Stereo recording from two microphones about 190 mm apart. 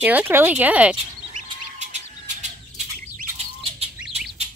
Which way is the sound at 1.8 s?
40° right (ahead or behind).